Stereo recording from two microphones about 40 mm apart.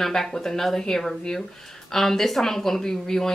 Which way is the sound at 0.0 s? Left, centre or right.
Centre.